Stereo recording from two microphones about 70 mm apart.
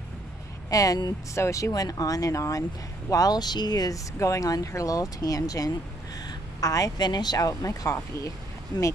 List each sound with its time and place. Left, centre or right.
0.7 s speech: left
1.3 s speech: left
1.7 s speech: left
3.1 s speech: left
4.2 s speech: left
8.7 s speech: left